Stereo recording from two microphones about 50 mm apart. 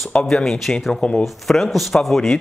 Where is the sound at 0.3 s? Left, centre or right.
Centre.